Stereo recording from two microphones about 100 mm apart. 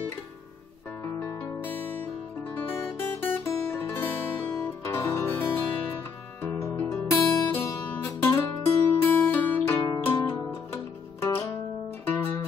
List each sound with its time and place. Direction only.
1.0 s music: 30° left (ahead or behind)
2.4 s guitar: 20° left (ahead or behind)
4.5 s music: 25° left (ahead or behind)
9.8 s music: 30° left (ahead or behind)